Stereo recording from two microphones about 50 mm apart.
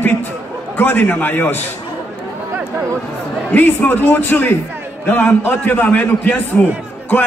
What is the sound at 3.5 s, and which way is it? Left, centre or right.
A man's voice, left.